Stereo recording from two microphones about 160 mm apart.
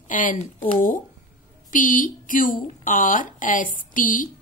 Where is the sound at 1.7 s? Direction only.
55° left (ahead or behind).